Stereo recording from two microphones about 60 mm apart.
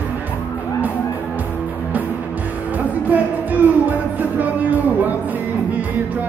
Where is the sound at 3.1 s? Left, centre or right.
Right.